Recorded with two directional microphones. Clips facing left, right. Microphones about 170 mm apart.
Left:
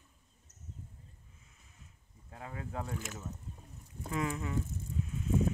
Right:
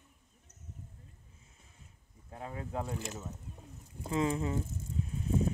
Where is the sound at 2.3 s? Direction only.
25° right (ahead or behind).